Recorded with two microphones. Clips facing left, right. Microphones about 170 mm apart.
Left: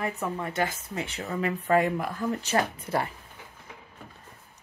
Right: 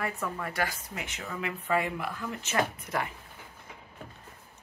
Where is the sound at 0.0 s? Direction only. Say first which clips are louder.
Left 3 dB; 20° left (ahead or behind).